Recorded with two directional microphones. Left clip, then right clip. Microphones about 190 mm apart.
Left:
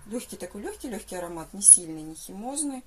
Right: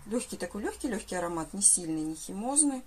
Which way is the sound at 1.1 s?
40° right (ahead or behind).